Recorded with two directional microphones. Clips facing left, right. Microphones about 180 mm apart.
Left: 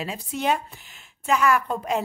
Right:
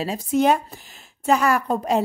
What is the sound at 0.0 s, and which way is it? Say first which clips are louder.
A woman's voice: right 8 dB; 40° right (ahead or behind).